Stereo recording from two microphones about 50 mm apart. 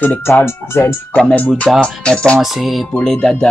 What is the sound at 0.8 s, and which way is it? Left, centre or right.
Speech, left.